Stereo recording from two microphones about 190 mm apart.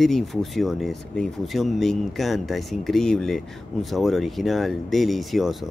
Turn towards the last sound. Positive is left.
turn(degrees=0)  # may be behind; listen again after turning